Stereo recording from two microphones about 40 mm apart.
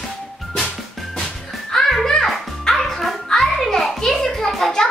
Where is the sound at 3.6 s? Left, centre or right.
Centre.